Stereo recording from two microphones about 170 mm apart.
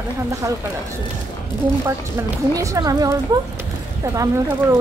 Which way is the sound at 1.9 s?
20° right (ahead or behind).